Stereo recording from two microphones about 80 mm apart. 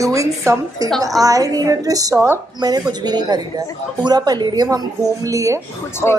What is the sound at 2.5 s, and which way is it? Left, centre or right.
A woman's voice, right.